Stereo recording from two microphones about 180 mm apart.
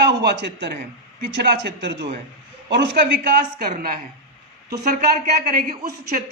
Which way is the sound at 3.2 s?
55° right (ahead or behind).